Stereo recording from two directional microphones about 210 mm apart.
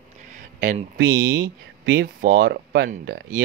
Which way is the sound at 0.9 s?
65° right (ahead or behind).